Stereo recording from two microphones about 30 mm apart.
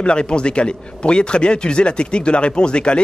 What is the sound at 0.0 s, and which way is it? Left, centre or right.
A man's voice, left.